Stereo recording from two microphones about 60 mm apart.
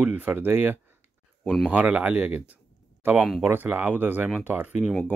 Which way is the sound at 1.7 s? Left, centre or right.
Right.